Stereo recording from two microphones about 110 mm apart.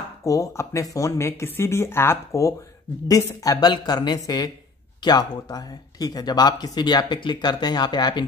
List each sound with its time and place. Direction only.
0.2 s speech: 30° left (ahead or behind)